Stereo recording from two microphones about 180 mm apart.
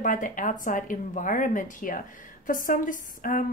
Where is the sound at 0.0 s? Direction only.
45° left (ahead or behind).